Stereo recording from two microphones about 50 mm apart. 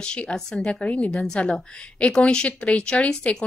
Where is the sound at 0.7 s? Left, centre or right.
Left.